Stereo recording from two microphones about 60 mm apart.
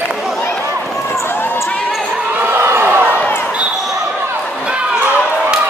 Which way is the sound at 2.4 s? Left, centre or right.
Right.